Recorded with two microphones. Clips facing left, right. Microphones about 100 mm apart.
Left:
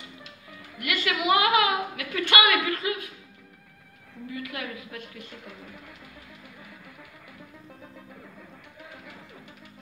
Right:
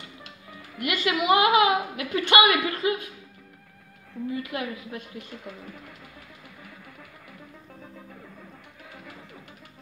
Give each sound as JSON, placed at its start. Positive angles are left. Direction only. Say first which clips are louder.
{"t": 0.7, "sound": "a woman's voice", "louder": "right 3 dB", "side_deg": -25}
{"t": 4.3, "sound": "a woman's voice", "louder": "right 4 dB", "side_deg": -25}